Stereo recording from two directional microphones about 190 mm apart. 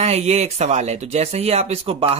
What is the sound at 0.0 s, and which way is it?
Speech, 35° right (ahead or behind).